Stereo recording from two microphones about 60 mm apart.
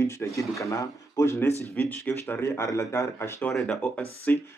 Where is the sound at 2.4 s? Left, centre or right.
Left.